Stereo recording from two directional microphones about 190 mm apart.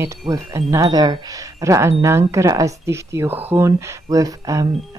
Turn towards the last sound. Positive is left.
turn(degrees=-15)  # may be behind; listen again after turning